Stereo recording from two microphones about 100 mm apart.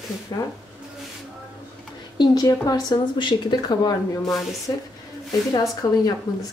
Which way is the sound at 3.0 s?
55° left (ahead or behind).